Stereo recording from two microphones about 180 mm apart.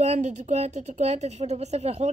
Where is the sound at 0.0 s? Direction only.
40° right (ahead or behind).